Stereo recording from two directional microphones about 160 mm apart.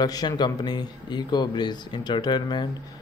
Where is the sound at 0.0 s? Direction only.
25° left (ahead or behind).